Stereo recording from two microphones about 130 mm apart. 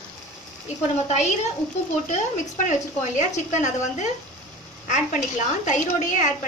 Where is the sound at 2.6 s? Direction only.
70° left (ahead or behind).